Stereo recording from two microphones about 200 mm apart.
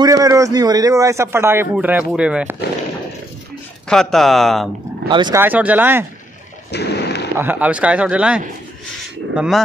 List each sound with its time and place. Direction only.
0.0 s a man's voice: 15° right (ahead or behind)
3.9 s speech: centre (ahead or behind)
5.0 s speech: 20° right (ahead or behind)
5.4 s a man's voice: 10° right (ahead or behind)
6.7 s a sound: 55° left (ahead or behind)
7.3 s a man's voice: 10° right (ahead or behind)